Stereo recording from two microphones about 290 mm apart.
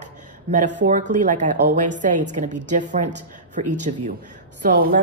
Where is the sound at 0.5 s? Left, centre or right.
Right.